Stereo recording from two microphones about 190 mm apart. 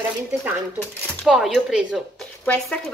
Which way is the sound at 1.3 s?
5° right (ahead or behind).